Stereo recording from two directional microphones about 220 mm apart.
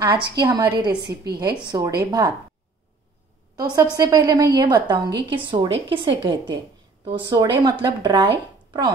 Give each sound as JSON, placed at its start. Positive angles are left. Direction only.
{"t": 0.0, "sound": "a woman's voice", "side_deg": -20}
{"t": 3.5, "sound": "a woman's voice", "side_deg": -15}